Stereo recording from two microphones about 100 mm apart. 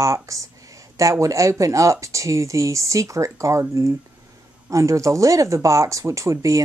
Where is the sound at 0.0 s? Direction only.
30° right (ahead or behind).